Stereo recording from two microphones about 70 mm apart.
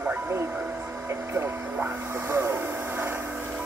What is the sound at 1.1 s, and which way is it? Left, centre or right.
Hum, right.